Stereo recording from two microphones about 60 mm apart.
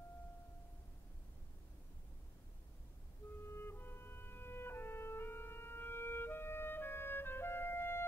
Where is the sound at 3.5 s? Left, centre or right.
Left.